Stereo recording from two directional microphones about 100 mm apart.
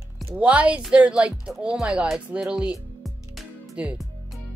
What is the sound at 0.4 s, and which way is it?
Speech, 10° right (ahead or behind).